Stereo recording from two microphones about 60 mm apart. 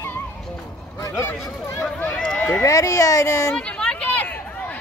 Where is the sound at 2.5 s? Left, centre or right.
Left.